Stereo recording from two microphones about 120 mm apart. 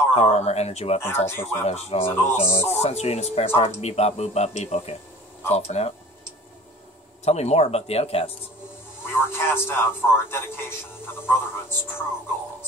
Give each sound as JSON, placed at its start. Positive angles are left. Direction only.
{"t": 0.1, "sound": "speech", "side_deg": 55}
{"t": 1.0, "sound": "a man's voice", "side_deg": 20}
{"t": 1.7, "sound": "speech", "side_deg": 60}
{"t": 7.2, "sound": "speech", "side_deg": 65}
{"t": 9.0, "sound": "a man's voice", "side_deg": 20}